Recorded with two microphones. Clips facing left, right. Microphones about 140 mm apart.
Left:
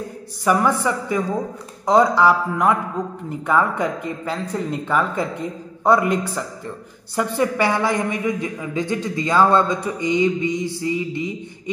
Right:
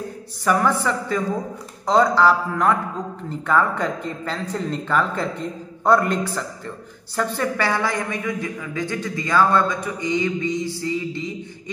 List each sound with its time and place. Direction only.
0.5 s a man's voice: 10° left (ahead or behind)